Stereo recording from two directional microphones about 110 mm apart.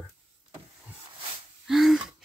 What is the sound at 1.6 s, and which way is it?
Speech, centre (ahead or behind).